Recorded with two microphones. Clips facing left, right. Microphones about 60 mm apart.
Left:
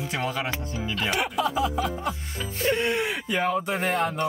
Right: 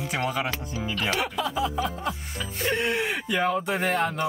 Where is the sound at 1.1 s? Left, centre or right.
Centre.